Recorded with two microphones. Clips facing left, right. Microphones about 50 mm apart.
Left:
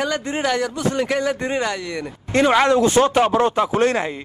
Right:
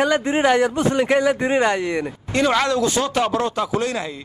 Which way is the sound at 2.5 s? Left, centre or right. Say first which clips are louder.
Left 6 dB; left.